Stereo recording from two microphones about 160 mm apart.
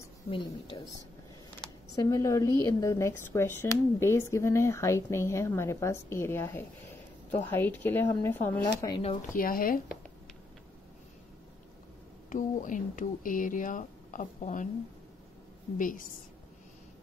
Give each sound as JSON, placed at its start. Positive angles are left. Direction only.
{"t": 0.3, "sound": "a woman's voice", "side_deg": 30}
{"t": 2.0, "sound": "speech", "side_deg": 20}
{"t": 8.9, "sound": "speech", "side_deg": 30}
{"t": 9.3, "sound": "speech", "side_deg": 60}
{"t": 12.3, "sound": "speech", "side_deg": 55}
{"t": 15.8, "sound": "speech", "side_deg": 55}